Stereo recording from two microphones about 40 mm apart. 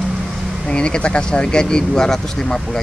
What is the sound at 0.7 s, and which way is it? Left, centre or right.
Speech, left.